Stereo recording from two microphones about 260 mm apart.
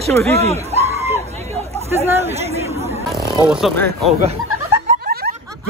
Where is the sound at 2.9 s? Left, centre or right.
Centre.